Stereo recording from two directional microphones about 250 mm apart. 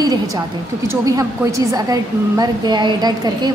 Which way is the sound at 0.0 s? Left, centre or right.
Centre.